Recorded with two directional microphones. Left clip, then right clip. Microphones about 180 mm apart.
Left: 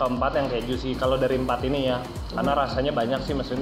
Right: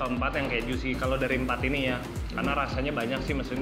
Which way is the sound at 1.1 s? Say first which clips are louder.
Left 5 dB; 40° right (ahead or behind).